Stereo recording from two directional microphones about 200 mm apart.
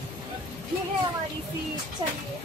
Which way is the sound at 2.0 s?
25° right (ahead or behind).